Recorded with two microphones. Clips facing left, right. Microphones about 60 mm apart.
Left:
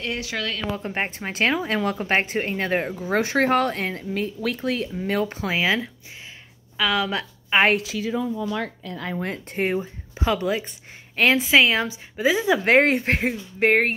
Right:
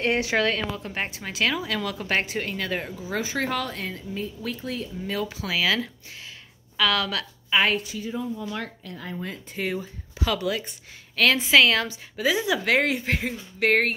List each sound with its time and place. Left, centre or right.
0.0 s a woman's voice: right
0.7 s a woman's voice: left
3.0 s speech: left
5.1 s a woman's voice: left
6.8 s a woman's voice: centre
7.7 s a woman's voice: left
9.2 s speech: left
9.8 s a woman's voice: left
13.6 s a woman's voice: left